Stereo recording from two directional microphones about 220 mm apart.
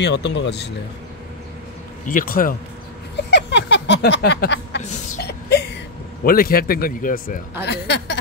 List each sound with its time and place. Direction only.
0.0 s speech: 50° left (ahead or behind)
2.0 s a man's voice: 40° left (ahead or behind)
3.2 s a sound: 55° left (ahead or behind)
6.2 s a man's voice: 40° left (ahead or behind)